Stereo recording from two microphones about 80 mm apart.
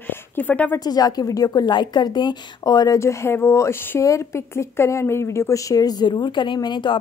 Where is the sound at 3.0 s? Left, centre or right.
Left.